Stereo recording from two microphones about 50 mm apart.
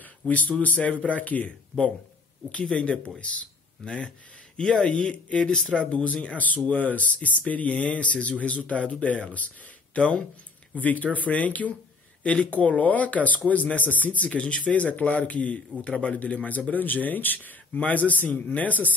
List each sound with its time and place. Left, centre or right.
0.2 s a man's voice: left